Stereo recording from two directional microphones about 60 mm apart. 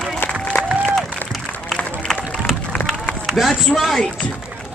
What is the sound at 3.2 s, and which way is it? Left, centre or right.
Speech, centre.